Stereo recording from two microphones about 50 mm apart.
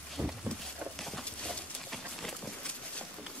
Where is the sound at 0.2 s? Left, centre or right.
Right.